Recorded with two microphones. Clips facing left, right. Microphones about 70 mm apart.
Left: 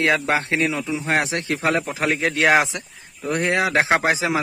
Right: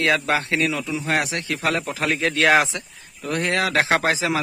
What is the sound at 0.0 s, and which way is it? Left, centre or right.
Speech, left.